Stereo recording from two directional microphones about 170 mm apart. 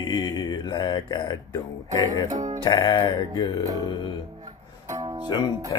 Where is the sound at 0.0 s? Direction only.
20° left (ahead or behind).